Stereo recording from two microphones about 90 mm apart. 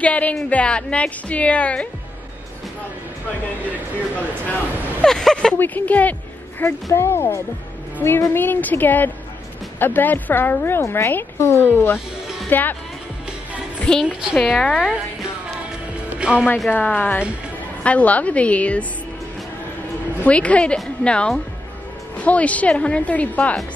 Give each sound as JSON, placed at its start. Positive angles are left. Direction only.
{"t": 0.0, "sound": "a woman's voice", "side_deg": 15}
{"t": 5.0, "sound": "speech", "side_deg": 5}
{"t": 5.6, "sound": "a woman's voice", "side_deg": 20}
{"t": 6.6, "sound": "a woman's voice", "side_deg": 30}
{"t": 13.9, "sound": "a woman's voice", "side_deg": 10}
{"t": 16.1, "sound": "music", "side_deg": -10}
{"t": 16.6, "sound": "a woman's voice", "side_deg": 20}
{"t": 20.2, "sound": "a woman's voice", "side_deg": 15}